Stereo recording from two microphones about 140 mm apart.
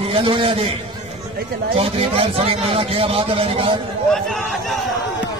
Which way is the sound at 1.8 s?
40° right (ahead or behind).